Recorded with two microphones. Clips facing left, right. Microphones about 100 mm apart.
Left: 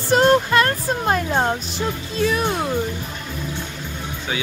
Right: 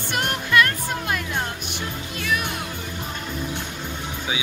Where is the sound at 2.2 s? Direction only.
30° left (ahead or behind).